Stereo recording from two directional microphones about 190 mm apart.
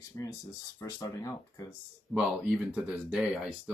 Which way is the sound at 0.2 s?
15° left (ahead or behind).